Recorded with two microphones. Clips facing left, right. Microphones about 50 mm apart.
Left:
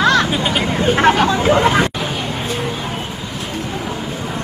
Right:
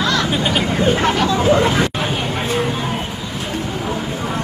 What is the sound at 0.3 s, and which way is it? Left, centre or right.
Vehicle, centre.